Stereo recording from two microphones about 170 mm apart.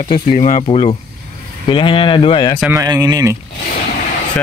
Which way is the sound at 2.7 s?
20° right (ahead or behind).